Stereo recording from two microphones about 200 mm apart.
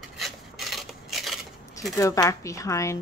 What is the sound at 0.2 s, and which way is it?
Filing, centre (ahead or behind).